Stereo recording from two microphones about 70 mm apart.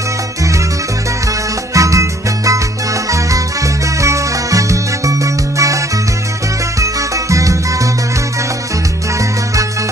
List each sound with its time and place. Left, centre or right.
1.7 s music: right